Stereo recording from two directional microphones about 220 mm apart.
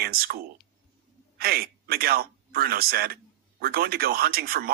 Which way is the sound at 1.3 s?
45° right (ahead or behind).